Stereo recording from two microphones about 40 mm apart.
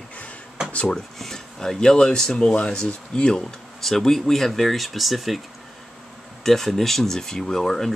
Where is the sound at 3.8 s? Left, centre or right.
Centre.